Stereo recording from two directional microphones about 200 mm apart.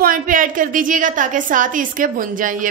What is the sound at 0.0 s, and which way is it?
A woman's voice, 40° right (ahead or behind).